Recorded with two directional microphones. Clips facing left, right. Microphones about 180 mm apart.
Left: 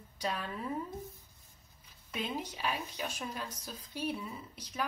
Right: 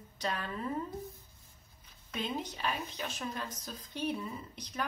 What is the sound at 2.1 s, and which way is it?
Speech, 10° left (ahead or behind).